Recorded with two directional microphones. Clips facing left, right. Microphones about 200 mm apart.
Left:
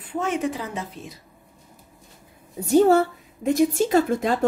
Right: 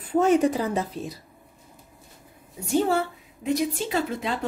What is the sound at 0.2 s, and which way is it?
Speech, 35° right (ahead or behind).